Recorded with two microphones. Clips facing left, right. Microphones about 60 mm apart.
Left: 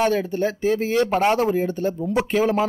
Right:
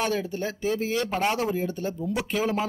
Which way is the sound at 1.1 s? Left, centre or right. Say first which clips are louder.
Left 6 dB; left.